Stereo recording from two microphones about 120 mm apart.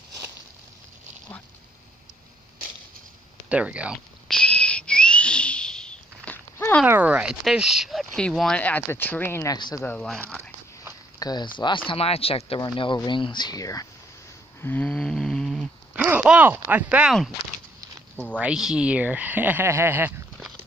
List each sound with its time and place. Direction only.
3.4 s speech: 10° right (ahead or behind)
4.3 s whistle: 10° left (ahead or behind)
6.9 s speech: 10° right (ahead or behind); by 9.6 s 25° left (ahead or behind)
9.6 s speech: 35° left (ahead or behind)
9.8 s speech: 5° left (ahead or behind)
11.1 s speech: 35° left (ahead or behind)
11.9 s speech: 55° left (ahead or behind)
12.5 s speech: 40° left (ahead or behind)
14.6 s snoring: 15° left (ahead or behind)
15.9 s speech: 10° right (ahead or behind)
18.1 s speech: 10° left (ahead or behind)
18.4 s speech: 5° right (ahead or behind)